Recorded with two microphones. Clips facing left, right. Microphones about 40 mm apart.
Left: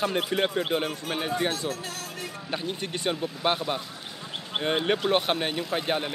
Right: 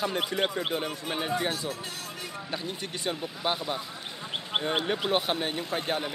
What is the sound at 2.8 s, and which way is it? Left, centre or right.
Speech, centre.